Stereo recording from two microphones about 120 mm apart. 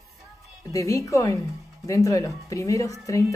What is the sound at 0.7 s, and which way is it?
Speech, 25° left (ahead or behind).